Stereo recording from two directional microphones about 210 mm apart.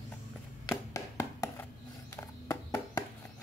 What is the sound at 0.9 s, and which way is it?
Hands, 15° left (ahead or behind).